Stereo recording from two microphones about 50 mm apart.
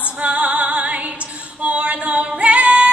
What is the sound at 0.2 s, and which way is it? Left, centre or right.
Music, right.